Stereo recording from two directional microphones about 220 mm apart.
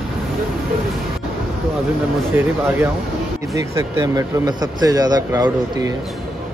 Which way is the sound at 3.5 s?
15° right (ahead or behind).